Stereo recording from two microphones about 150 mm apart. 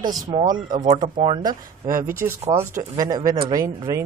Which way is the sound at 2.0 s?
70° right (ahead or behind).